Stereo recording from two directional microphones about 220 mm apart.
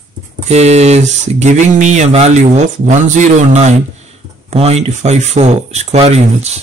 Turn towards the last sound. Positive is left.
turn(degrees=-30)  # may be behind; listen again after turning